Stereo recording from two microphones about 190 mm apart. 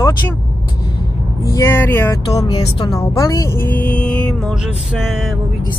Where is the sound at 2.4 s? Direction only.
25° left (ahead or behind); by 4.5 s 10° left (ahead or behind).